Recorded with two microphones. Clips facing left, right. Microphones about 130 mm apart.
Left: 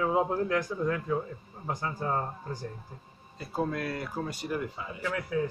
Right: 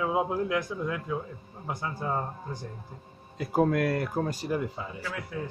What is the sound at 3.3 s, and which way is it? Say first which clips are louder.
Speech: right 7 dB; 90° right.